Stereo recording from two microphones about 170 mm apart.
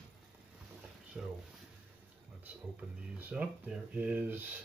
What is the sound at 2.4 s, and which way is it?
Speech, 10° right (ahead or behind).